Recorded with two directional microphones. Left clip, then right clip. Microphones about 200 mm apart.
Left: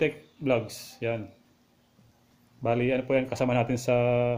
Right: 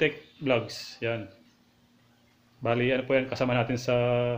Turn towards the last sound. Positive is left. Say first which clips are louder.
# left 1 dB
turn(degrees=15)  # may be behind; listen again after turning